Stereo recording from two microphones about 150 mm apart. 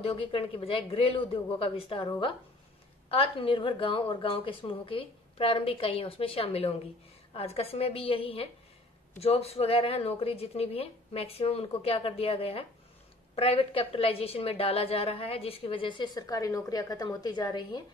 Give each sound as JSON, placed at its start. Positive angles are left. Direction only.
{"t": 0.0, "sound": "a woman's voice", "side_deg": 40}